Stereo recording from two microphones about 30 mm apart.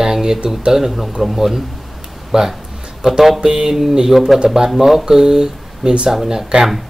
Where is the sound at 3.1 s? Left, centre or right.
Centre.